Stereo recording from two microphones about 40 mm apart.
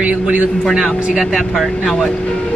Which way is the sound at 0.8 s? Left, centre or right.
Centre.